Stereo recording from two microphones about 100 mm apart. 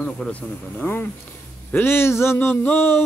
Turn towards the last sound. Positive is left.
turn(degrees=25)  # may be behind; listen again after turning